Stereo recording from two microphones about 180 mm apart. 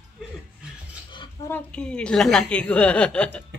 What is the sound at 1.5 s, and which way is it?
A woman's voice, 5° left (ahead or behind).